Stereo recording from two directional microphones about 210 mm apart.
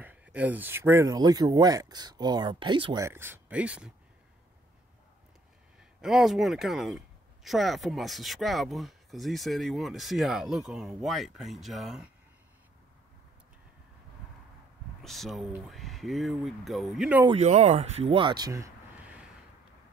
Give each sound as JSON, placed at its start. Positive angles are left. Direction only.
{"t": 0.0, "sound": "speech", "side_deg": -5}
{"t": 5.9, "sound": "speech", "side_deg": 0}
{"t": 15.0, "sound": "speech", "side_deg": 0}
{"t": 17.4, "sound": "speech", "side_deg": -30}